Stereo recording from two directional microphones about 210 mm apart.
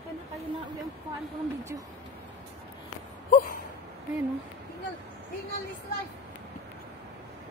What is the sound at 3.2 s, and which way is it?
Gasp, 45° left (ahead or behind).